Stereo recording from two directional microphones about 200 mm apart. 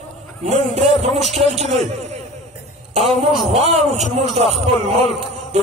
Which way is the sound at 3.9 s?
35° right (ahead or behind).